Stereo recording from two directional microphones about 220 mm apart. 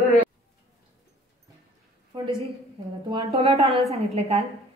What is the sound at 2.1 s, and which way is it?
A woman's voice, 25° right (ahead or behind).